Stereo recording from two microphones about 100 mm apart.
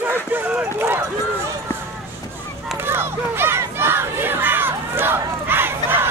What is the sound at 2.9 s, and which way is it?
Crowd, 25° right (ahead or behind).